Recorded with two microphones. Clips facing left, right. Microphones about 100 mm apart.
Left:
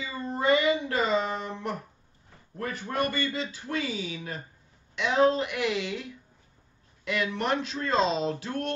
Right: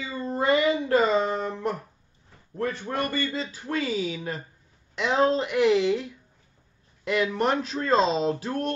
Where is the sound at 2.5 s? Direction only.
30° right (ahead or behind).